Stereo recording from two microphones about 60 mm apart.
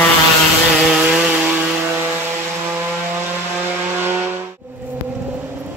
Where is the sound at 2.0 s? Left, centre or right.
Right.